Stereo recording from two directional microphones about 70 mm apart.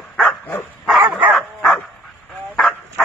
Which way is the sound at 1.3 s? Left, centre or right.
Centre.